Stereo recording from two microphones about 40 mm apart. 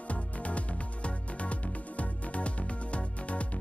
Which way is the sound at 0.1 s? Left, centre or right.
Left.